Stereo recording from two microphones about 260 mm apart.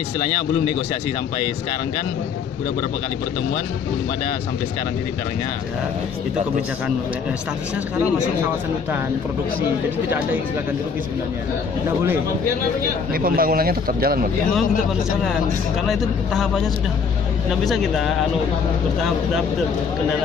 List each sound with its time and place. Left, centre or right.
10.0 s speech: centre
13.1 s speech: right
15.9 s speech: centre
17.6 s speech: centre